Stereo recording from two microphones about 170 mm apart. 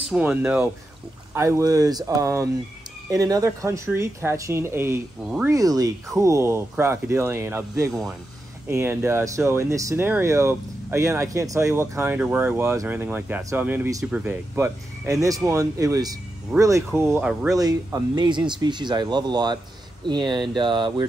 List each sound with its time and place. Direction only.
0.1 s speech: 10° right (ahead or behind); by 21.1 s 30° right (ahead or behind)